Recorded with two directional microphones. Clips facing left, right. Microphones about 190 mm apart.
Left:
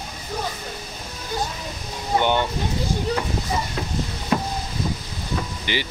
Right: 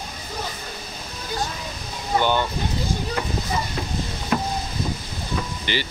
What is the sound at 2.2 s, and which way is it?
Speech, 25° left (ahead or behind).